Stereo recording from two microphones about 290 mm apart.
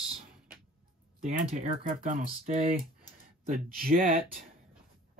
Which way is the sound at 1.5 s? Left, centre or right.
Right.